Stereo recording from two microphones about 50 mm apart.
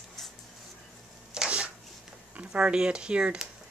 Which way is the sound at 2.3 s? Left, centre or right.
Centre.